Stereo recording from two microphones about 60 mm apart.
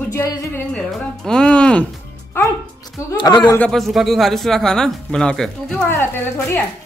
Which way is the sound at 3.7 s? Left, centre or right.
Centre.